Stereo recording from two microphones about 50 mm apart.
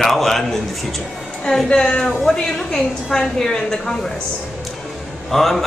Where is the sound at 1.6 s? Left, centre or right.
Centre.